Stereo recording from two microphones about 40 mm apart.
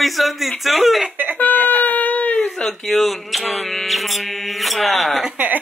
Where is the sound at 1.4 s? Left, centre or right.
Left.